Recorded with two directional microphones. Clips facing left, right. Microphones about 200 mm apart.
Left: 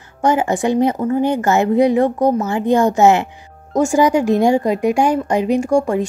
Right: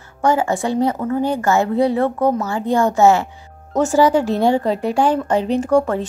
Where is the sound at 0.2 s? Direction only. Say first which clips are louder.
Left 1 dB; 20° left (ahead or behind).